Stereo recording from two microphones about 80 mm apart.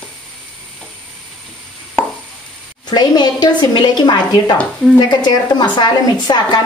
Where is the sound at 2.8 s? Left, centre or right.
Left.